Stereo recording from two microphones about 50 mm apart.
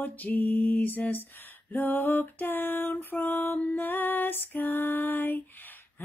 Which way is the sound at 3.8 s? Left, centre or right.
Left.